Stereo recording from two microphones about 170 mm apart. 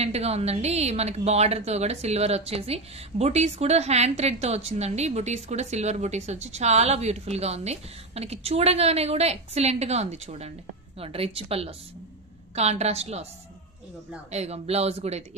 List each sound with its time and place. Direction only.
0.0 s speech: 40° right (ahead or behind)
14.3 s speech: 40° right (ahead or behind)